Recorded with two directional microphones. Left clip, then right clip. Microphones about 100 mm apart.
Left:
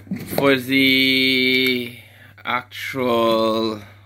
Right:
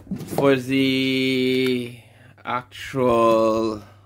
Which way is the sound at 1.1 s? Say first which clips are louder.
Left 4 dB; 35° right (ahead or behind).